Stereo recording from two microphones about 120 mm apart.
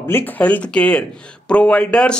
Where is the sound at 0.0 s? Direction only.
15° left (ahead or behind).